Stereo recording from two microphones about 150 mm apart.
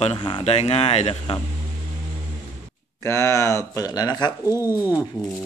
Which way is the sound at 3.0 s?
20° left (ahead or behind).